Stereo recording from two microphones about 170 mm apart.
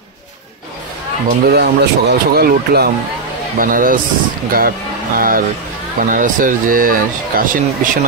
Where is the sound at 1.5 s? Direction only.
75° right (ahead or behind).